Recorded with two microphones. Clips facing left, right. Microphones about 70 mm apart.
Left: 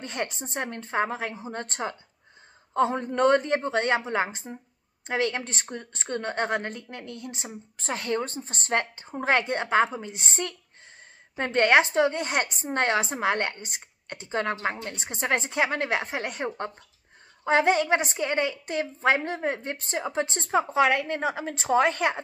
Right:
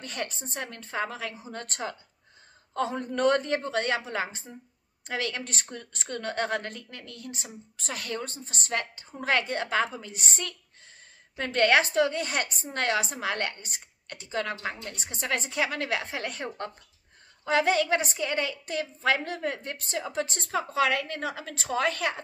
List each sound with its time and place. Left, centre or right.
0.0 s a woman's voice: left